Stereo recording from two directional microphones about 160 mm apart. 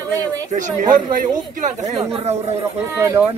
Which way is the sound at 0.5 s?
50° right (ahead or behind).